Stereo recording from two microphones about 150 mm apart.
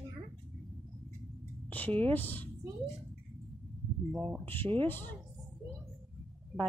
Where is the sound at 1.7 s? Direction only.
10° left (ahead or behind).